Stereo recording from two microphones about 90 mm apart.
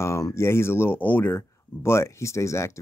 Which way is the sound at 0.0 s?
35° left (ahead or behind).